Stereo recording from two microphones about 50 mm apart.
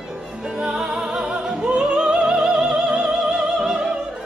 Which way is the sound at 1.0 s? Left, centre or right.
Centre.